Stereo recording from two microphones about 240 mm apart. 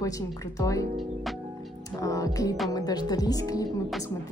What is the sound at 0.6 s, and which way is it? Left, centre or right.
Speech, centre.